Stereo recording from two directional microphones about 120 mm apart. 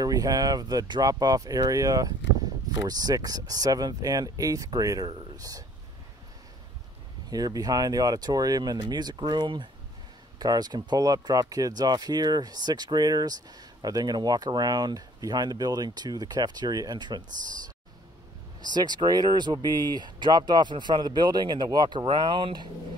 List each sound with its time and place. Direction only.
0.0 s speech: 30° right (ahead or behind)
7.2 s speech: 30° right (ahead or behind)
18.6 s speech: 35° right (ahead or behind)